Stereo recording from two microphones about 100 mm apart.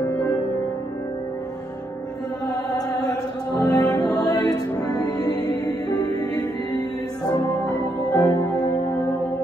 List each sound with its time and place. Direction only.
3.5 s music: 35° left (ahead or behind)
8.1 s music: 40° left (ahead or behind)